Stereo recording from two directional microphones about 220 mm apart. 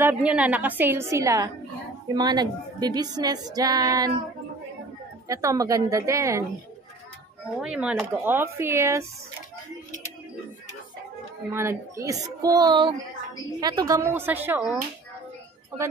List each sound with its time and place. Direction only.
0.0 s a woman's voice: 5° right (ahead or behind)
5.3 s a woman's voice: 15° right (ahead or behind)
7.6 s a woman's voice: 5° right (ahead or behind)
11.5 s a woman's voice: 15° right (ahead or behind)